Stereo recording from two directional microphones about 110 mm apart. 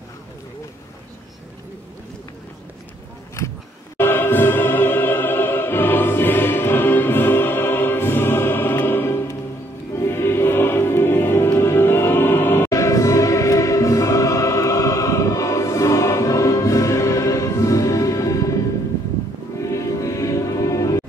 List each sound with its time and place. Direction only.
4.0 s music: 20° left (ahead or behind)
19.6 s music: 30° left (ahead or behind)